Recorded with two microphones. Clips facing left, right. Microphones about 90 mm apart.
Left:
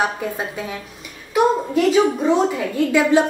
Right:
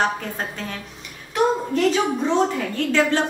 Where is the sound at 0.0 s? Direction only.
10° left (ahead or behind).